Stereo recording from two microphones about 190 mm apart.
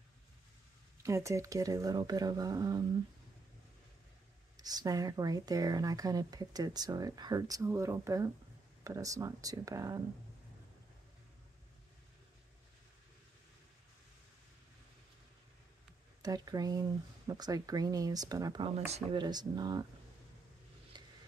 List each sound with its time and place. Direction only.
1.0 s speech: 15° right (ahead or behind)
4.6 s speech: 20° right (ahead or behind)
16.2 s speech: 20° right (ahead or behind)
18.9 s speech: 35° right (ahead or behind)
19.2 s speech: 20° right (ahead or behind)
20.9 s a sound: 25° right (ahead or behind)